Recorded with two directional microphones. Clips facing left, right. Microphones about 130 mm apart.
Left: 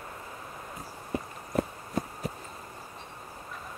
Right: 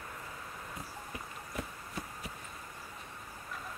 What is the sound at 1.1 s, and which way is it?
Horse, 40° left (ahead or behind).